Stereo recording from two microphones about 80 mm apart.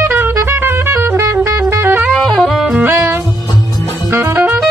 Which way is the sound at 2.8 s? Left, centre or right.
Right.